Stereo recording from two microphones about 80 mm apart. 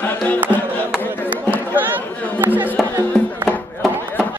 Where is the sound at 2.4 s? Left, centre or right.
Right.